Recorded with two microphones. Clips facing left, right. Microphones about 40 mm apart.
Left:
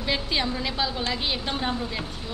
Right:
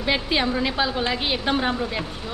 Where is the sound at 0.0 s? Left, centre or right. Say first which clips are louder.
Right 4 dB; centre.